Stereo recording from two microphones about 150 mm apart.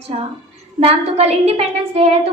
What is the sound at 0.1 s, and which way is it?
A woman's voice, 50° right (ahead or behind).